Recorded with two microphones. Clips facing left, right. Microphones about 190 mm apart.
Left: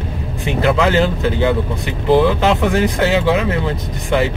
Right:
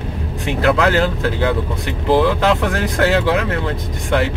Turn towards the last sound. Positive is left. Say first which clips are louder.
# left 1 dB
turn(degrees=5)  # may be behind; listen again after turning